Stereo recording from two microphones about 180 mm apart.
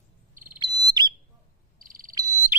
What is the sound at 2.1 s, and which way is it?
Frog, 15° right (ahead or behind).